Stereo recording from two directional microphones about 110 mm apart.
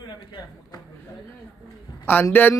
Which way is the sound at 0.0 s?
40° left (ahead or behind).